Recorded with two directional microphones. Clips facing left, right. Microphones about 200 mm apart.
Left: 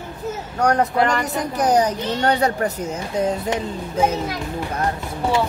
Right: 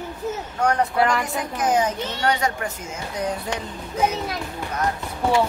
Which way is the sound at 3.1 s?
25° left (ahead or behind).